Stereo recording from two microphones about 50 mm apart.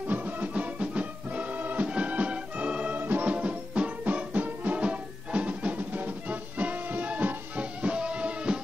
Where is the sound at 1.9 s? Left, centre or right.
Right.